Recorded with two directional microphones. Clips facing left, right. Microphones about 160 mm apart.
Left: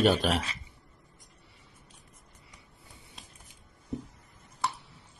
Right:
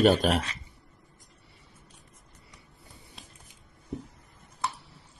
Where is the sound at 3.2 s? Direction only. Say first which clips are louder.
Right 1 dB; centre (ahead or behind).